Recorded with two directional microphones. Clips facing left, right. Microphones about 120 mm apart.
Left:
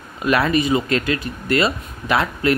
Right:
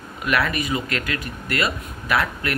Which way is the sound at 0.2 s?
25° left (ahead or behind).